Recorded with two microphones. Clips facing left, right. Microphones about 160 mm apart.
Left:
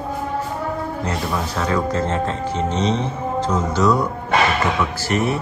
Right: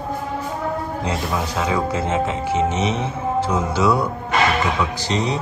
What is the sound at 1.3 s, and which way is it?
Speech, 15° right (ahead or behind).